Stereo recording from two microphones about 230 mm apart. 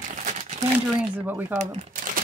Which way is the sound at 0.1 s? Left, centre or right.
Right.